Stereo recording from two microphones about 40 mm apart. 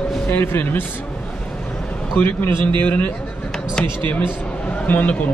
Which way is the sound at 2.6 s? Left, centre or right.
Left.